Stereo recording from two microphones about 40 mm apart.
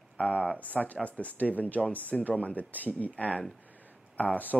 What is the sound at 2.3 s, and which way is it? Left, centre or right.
Speech, left.